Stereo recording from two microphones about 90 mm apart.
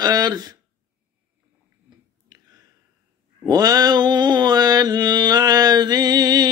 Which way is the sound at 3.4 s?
45° right (ahead or behind).